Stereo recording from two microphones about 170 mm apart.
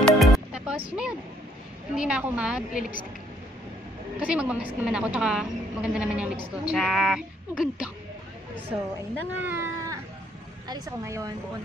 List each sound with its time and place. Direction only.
0.0 s music: 5° right (ahead or behind)
2.0 s a woman's voice: 5° right (ahead or behind)
2.8 s a woman's voice: 50° left (ahead or behind)
4.2 s a woman's voice: 5° right (ahead or behind)
9.4 s speech: 15° right (ahead or behind)